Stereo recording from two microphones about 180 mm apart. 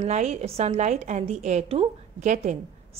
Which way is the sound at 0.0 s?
40° right (ahead or behind).